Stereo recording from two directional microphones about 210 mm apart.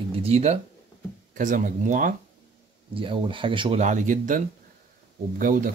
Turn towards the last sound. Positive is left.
turn(degrees=-40)  # may be behind; listen again after turning